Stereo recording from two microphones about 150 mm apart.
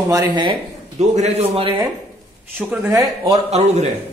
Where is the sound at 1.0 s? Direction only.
45° right (ahead or behind).